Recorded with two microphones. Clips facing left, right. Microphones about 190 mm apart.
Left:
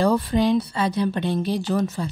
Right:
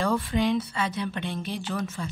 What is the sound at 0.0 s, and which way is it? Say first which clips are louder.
A woman's voice: left 5 dB; 40° left (ahead or behind).